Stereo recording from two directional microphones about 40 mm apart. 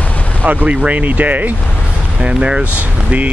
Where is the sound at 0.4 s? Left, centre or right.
Right.